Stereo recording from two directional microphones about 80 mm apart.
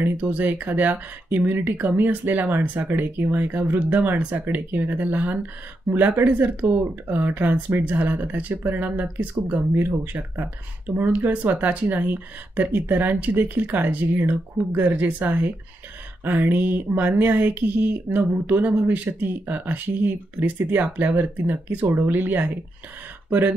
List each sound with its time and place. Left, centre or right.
0.0 s speech: right